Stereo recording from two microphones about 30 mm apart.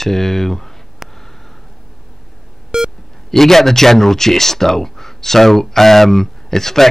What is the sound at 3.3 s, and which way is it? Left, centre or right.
Speech, centre.